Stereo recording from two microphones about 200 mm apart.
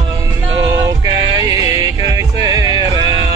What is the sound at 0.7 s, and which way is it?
Music, 20° right (ahead or behind).